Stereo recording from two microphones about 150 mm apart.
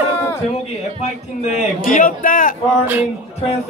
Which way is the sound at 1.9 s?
65° left (ahead or behind).